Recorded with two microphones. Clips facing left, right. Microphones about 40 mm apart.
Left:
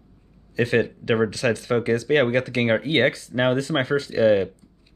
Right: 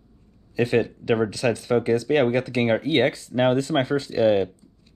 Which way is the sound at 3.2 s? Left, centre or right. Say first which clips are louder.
Right 1 dB; left.